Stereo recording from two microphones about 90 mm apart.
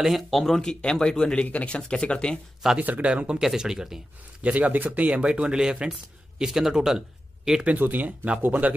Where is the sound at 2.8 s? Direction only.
15° right (ahead or behind).